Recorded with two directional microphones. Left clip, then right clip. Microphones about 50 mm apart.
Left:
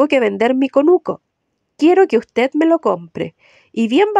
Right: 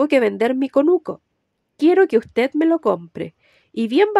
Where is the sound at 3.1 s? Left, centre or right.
Left.